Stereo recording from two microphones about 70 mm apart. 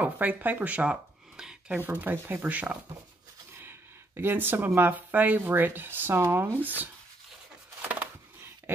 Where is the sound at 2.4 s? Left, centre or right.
Centre.